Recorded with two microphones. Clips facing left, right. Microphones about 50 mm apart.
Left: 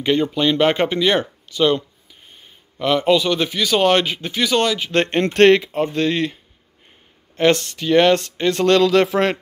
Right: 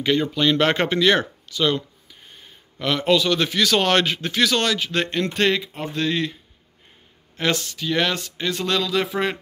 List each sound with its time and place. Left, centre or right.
0.0 s a man's voice: left
1.5 s a sound: left
2.8 s a man's voice: left
4.9 s speech: left
5.3 s speech: left
5.8 s speech: left
7.3 s speech: left